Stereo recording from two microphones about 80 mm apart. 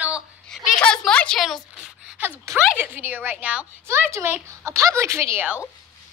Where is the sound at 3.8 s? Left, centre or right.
Right.